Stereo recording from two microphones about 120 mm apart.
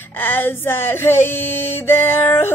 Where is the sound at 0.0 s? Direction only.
15° left (ahead or behind).